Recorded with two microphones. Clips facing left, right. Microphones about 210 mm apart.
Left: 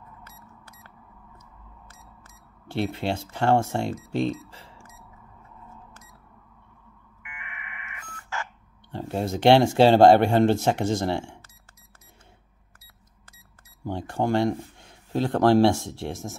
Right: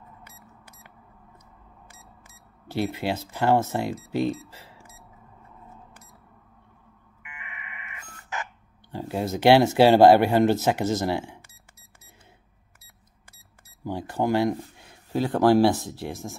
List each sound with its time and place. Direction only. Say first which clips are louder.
1.9 s speech: left 1 dB; 10° right (ahead or behind)
7.2 s a sound: even; 20° right (ahead or behind)
8.9 s speech: even; centre (ahead or behind)
13.8 s speech: even; 5° right (ahead or behind)